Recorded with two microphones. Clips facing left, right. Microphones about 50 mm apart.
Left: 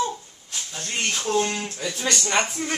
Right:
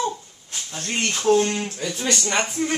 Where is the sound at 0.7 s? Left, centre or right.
Right.